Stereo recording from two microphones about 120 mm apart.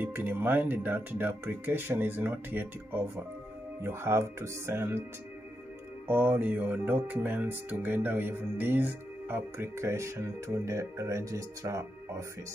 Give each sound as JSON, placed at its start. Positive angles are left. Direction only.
{"t": 0.0, "sound": "speech", "side_deg": -15}
{"t": 6.0, "sound": "speech", "side_deg": -15}